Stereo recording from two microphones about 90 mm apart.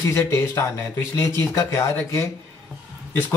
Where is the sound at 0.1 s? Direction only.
30° left (ahead or behind).